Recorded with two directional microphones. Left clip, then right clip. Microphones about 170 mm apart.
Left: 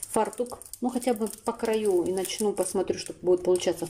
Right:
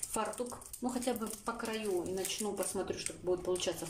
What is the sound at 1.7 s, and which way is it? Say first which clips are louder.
Speech: left 13 dB; 45° left (ahead or behind).